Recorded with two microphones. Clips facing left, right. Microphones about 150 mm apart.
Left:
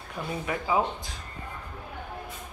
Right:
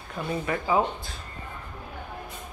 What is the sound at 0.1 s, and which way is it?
Speech, 5° left (ahead or behind).